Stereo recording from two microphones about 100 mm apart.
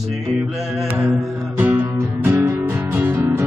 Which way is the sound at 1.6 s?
20° right (ahead or behind).